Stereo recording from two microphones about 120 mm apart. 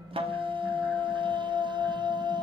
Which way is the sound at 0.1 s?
45° right (ahead or behind).